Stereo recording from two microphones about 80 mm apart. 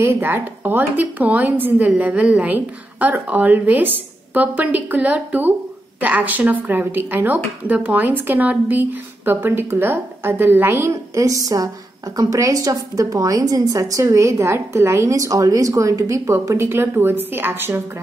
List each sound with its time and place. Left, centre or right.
0.0 s a woman's voice: right